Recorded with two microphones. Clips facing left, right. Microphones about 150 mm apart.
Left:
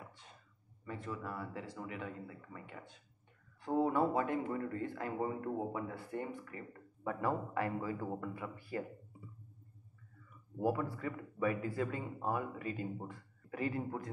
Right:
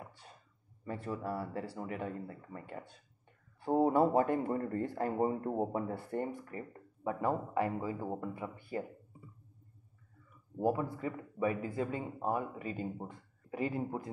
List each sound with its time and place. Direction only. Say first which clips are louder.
0.8 s speech: right 5 dB; 35° right (ahead or behind)
7.0 s speech: right 3 dB; 20° right (ahead or behind)
10.6 s speech: right 2 dB; 20° right (ahead or behind)